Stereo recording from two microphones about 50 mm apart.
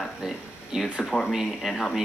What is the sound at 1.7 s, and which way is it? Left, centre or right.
Speech, centre.